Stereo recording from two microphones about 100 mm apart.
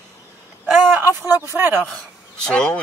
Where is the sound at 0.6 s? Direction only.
5° right (ahead or behind).